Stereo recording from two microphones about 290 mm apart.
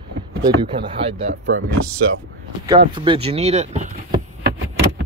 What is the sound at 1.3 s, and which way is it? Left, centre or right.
Speech, right.